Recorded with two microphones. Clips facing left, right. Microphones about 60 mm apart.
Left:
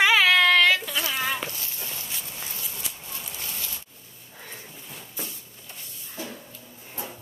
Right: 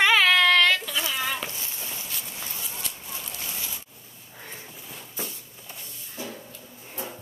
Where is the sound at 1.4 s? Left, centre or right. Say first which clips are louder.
Even; right.